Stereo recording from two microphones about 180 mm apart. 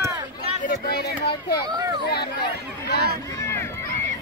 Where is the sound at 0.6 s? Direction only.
65° left (ahead or behind).